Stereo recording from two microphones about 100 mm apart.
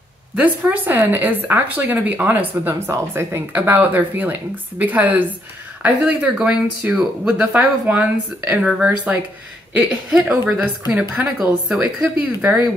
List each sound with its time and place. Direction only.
0.4 s a woman's voice: 20° right (ahead or behind)
10.8 s speech: 45° left (ahead or behind)
11.3 s speech: 5° right (ahead or behind)